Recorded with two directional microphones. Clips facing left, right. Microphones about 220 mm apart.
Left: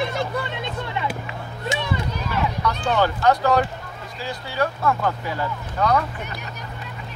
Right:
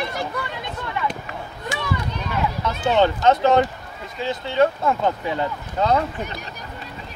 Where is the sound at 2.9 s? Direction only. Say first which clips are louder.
Right 3 dB; 20° right (ahead or behind).